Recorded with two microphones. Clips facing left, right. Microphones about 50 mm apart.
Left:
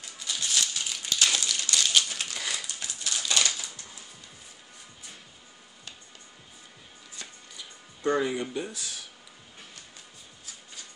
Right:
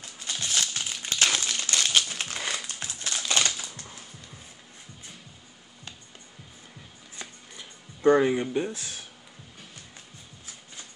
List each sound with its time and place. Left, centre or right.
0.3 s crumpling: right
7.2 s music: right